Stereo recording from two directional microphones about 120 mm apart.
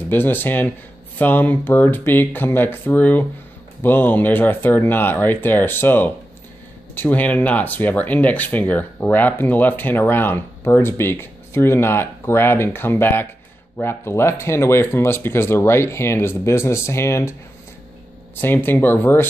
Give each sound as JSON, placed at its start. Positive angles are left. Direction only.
{"t": 0.1, "sound": "speech", "side_deg": 15}